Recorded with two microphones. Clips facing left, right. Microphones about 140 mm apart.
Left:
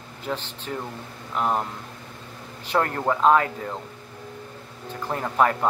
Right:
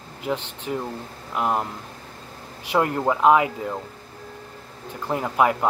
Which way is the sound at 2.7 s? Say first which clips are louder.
Right 2 dB; 10° right (ahead or behind).